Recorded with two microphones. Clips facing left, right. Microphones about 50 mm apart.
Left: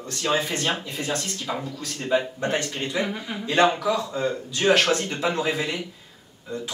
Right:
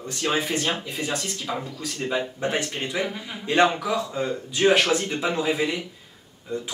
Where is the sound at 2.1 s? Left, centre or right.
Centre.